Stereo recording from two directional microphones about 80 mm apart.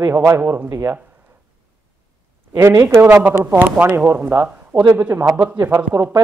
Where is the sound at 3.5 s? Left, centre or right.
Right.